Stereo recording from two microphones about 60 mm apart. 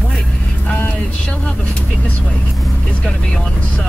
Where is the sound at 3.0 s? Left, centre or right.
Centre.